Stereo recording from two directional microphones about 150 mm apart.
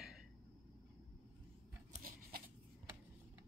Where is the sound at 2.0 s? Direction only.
80° right.